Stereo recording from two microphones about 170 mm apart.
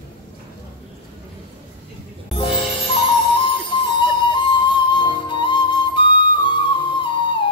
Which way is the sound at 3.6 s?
30° left (ahead or behind).